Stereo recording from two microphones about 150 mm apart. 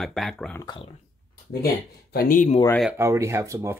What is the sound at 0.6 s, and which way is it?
Speech, 35° left (ahead or behind).